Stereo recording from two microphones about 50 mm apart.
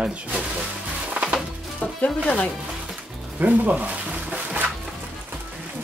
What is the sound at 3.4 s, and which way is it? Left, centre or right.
Speech, right.